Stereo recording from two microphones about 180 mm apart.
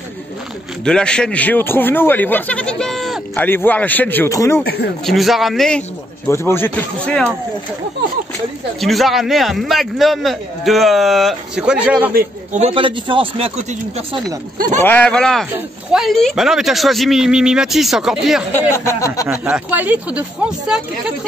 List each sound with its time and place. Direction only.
0.8 s speech: 5° left (ahead or behind)
4.6 s speech: 65° left (ahead or behind)
5.0 s a man's voice: centre (ahead or behind)
8.8 s a man's voice: centre (ahead or behind)
12.5 s a man's voice: 35° right (ahead or behind)
14.8 s a man's voice: 10° left (ahead or behind)
18.5 s speech: 15° left (ahead or behind)
19.2 s speech: 5° right (ahead or behind)